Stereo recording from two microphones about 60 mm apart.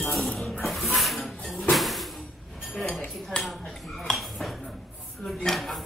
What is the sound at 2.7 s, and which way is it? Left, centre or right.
Cutlery, centre.